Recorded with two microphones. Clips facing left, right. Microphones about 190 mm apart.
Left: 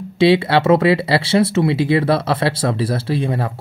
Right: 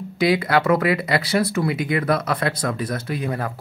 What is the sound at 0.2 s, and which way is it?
Speech, 25° left (ahead or behind).